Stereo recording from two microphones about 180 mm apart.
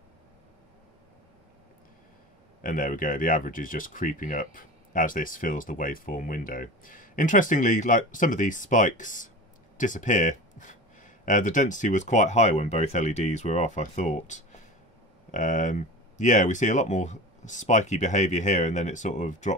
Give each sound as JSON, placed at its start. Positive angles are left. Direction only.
{"t": 2.6, "sound": "speech", "side_deg": 50}